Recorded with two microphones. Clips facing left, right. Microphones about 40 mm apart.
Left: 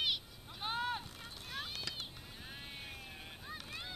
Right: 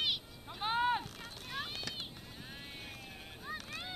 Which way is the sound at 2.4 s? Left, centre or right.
Centre.